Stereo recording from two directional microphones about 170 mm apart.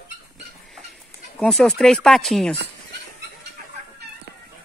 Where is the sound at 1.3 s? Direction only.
5° left (ahead or behind).